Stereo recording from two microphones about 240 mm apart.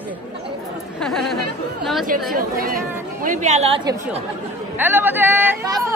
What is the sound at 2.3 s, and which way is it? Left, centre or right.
A woman's voice, right.